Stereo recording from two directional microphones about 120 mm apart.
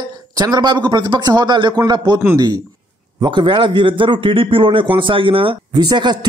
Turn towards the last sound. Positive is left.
turn(degrees=-35)  # may be behind; listen again after turning